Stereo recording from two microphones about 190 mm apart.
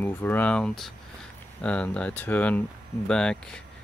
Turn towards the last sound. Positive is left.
turn(degrees=5)  # may be behind; listen again after turning